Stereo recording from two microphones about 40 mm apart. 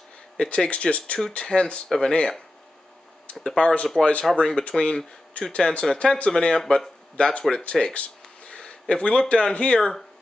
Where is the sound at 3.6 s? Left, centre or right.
Left.